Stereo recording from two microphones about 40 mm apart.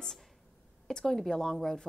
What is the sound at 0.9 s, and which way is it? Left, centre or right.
Speech, centre.